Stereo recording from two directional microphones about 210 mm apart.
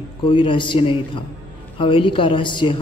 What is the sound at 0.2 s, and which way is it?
A man's voice, 25° left (ahead or behind).